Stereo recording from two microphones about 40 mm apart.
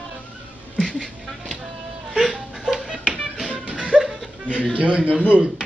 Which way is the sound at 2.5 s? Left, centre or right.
Centre.